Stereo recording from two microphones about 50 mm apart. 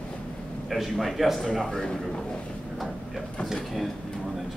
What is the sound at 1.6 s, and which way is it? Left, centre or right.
Speech, centre.